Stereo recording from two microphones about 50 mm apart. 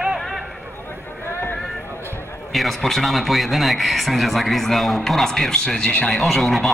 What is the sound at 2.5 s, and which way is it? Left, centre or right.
Speech, centre.